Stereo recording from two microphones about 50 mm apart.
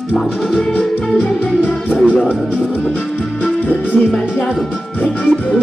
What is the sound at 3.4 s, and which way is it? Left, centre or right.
Music, left.